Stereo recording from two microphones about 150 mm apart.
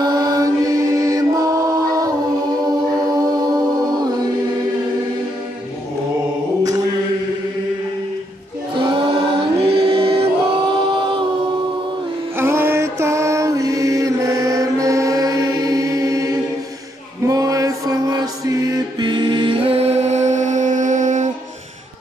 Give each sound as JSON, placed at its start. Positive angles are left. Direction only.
{"t": 0.0, "sound": "chant", "side_deg": -25}
{"t": 8.7, "sound": "choir", "side_deg": -35}
{"t": 9.6, "sound": "music", "side_deg": -35}
{"t": 12.4, "sound": "mantra", "side_deg": -15}
{"t": 17.3, "sound": "chant", "side_deg": -25}
{"t": 18.9, "sound": "music", "side_deg": -30}